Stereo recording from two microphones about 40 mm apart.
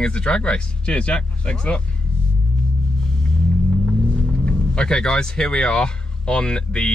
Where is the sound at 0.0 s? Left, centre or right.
Left.